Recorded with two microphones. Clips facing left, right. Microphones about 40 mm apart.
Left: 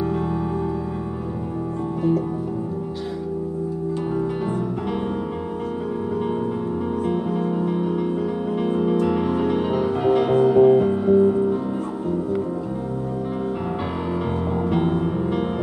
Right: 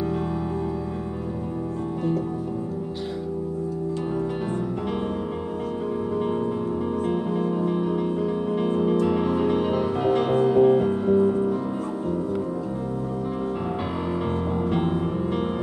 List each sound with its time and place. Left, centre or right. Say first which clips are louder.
7.1 s music: left 2 dB; centre
14.7 s music: left 5 dB; centre